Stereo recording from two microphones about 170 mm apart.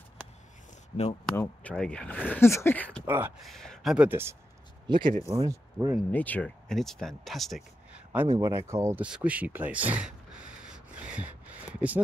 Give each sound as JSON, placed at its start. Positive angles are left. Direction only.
{"t": 1.3, "sound": "speech", "side_deg": 10}
{"t": 3.1, "sound": "speech", "side_deg": -10}
{"t": 3.4, "sound": "speech", "side_deg": 0}
{"t": 4.8, "sound": "speech", "side_deg": -30}
{"t": 6.1, "sound": "speech", "side_deg": 10}
{"t": 8.1, "sound": "speech", "side_deg": -15}
{"t": 9.0, "sound": "a sound", "side_deg": -5}